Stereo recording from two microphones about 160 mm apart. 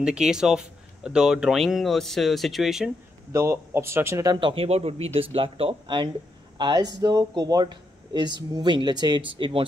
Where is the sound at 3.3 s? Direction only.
20° right (ahead or behind).